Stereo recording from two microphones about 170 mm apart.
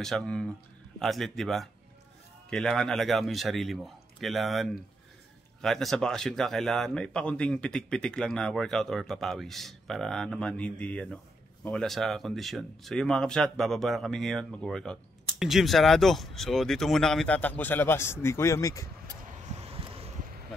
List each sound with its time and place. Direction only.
0.0 s speech: 5° left (ahead or behind); by 18.9 s 20° left (ahead or behind)
19.5 s vehicle: 35° right (ahead or behind)